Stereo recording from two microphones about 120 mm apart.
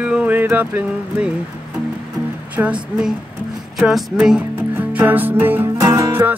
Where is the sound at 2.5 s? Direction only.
10° right (ahead or behind).